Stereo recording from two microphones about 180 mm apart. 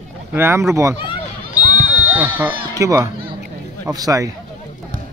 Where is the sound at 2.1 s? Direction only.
10° right (ahead or behind).